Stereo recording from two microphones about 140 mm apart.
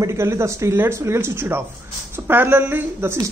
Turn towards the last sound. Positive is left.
turn(degrees=-15)  # may be behind; listen again after turning